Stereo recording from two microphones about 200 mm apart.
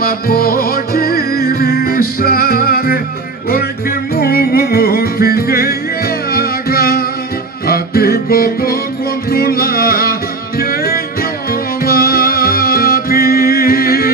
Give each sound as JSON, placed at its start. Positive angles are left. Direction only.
{"t": 0.0, "sound": "music", "side_deg": 50}
{"t": 4.1, "sound": "music", "side_deg": 50}